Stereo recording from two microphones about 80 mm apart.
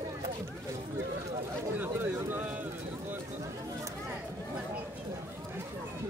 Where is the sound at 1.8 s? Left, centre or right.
Right.